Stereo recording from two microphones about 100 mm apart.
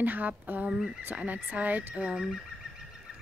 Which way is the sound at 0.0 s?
15° right (ahead or behind).